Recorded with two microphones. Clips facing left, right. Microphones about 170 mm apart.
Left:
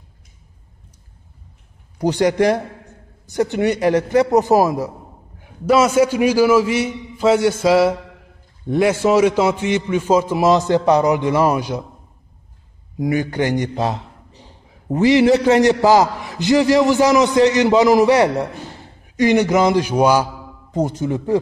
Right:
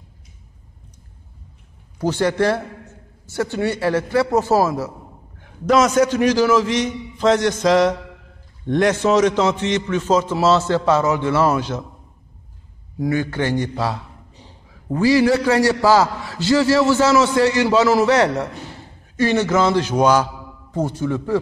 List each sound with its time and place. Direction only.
2.0 s a man's voice: 15° left (ahead or behind)
13.0 s a man's voice: 15° left (ahead or behind)